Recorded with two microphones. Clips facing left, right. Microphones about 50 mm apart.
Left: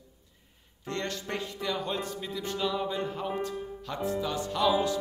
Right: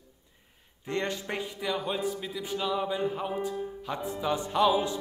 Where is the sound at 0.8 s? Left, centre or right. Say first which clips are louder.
Right 3 dB; centre.